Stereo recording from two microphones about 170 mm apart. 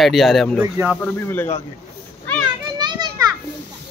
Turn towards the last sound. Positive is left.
turn(degrees=-25)  # may be behind; listen again after turning